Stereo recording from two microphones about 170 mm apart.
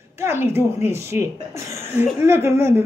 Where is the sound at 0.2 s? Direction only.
15° right (ahead or behind).